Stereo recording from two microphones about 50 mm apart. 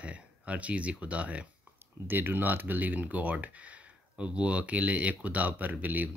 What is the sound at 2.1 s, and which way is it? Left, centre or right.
Speech, right.